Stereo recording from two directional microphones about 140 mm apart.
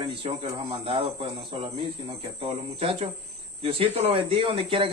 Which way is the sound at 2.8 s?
40° right (ahead or behind).